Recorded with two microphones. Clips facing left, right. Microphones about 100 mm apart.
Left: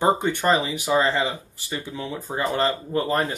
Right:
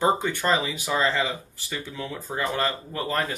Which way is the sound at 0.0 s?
20° left (ahead or behind).